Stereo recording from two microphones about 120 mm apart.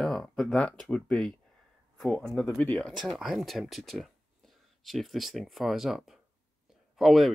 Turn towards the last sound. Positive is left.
turn(degrees=0)  # may be behind; listen again after turning